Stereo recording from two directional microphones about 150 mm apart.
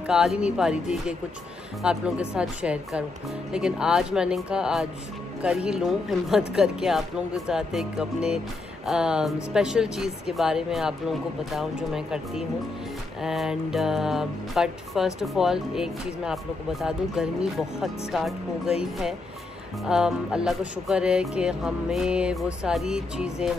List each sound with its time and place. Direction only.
0.0 s speech: 5° right (ahead or behind)